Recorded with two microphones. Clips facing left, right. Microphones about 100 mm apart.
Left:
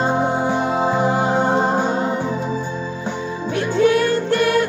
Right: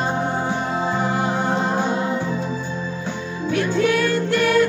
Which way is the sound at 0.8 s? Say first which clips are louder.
Left 3 dB; 25° left (ahead or behind).